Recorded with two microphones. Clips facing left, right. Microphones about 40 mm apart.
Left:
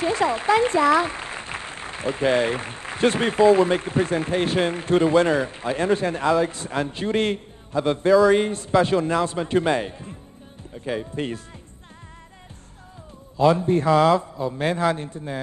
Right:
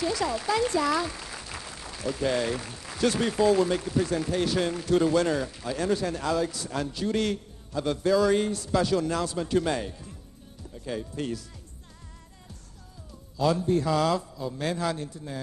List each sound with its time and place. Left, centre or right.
0.0 s speech: left
8.1 s a man's voice: centre
8.4 s speech: left
13.4 s speech: left